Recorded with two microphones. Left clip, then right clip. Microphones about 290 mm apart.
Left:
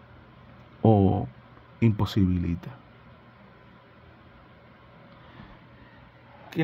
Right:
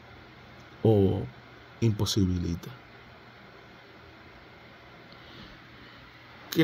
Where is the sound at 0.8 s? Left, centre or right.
Left.